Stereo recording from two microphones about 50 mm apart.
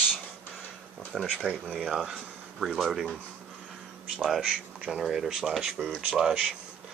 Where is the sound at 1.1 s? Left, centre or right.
Centre.